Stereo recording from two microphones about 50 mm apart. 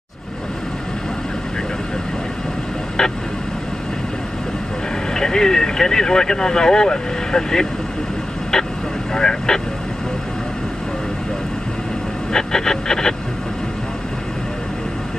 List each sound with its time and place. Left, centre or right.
3.0 s vehicle: centre
5.1 s speech: centre
9.1 s speech: centre
12.3 s a sound: centre